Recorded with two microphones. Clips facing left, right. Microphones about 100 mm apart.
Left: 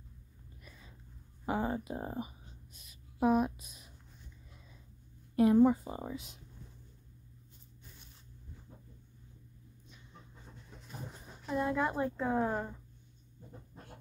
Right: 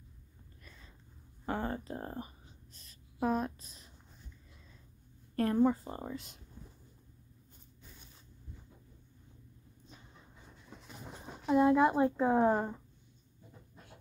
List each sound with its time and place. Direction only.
1.4 s a sound: 10° left (ahead or behind)
5.3 s a woman's voice: 10° left (ahead or behind)
11.5 s a woman's voice: 15° right (ahead or behind)